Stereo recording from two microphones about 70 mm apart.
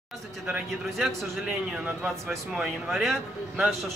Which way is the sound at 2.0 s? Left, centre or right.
Centre.